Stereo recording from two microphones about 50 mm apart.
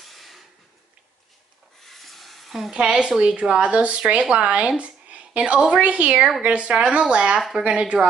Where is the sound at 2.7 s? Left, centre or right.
Centre.